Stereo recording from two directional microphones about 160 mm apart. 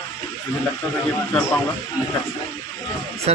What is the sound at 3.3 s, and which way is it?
Speech, 40° right (ahead or behind).